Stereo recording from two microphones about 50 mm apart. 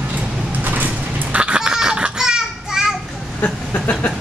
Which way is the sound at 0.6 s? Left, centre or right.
Right.